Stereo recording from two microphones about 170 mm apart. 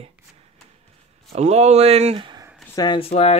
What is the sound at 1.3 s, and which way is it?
Speech, 40° right (ahead or behind).